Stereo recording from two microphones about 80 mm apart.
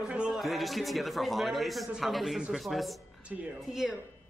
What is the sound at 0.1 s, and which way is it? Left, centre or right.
Music, centre.